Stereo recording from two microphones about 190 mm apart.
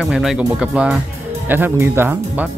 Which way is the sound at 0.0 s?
Centre (ahead or behind).